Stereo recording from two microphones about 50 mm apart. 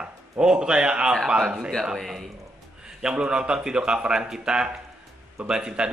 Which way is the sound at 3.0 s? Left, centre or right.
Centre.